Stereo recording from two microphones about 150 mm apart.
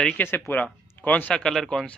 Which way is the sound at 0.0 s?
5° left (ahead or behind).